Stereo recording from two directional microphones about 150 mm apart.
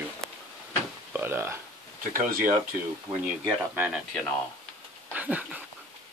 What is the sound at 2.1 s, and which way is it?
Speech, 65° right (ahead or behind).